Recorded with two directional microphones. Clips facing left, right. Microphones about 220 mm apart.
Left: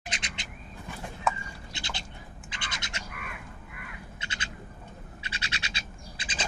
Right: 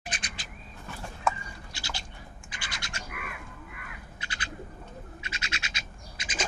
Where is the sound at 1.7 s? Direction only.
20° left (ahead or behind).